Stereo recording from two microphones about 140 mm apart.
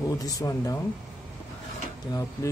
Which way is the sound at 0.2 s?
25° left (ahead or behind).